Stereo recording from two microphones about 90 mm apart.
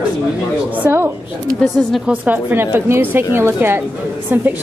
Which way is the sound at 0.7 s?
20° right (ahead or behind).